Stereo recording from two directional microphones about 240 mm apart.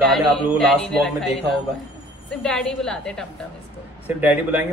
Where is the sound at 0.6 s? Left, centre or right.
Centre.